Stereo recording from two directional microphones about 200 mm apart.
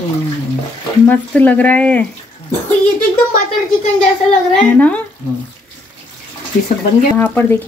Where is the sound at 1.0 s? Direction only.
10° left (ahead or behind).